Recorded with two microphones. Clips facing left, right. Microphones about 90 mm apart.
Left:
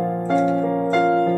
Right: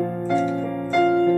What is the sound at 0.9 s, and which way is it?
Music, 30° left (ahead or behind).